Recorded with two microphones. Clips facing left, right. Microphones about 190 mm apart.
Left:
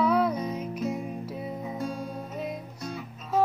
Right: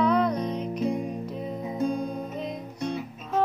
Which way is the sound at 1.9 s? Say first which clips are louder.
Right 4 dB; 5° left (ahead or behind).